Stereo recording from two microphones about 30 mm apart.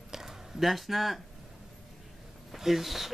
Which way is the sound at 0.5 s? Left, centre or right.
Centre.